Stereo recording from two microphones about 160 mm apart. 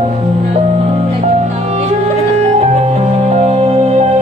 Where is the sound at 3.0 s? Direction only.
40° right (ahead or behind).